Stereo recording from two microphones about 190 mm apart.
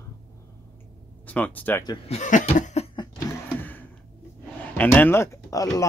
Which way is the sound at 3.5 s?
10° left (ahead or behind).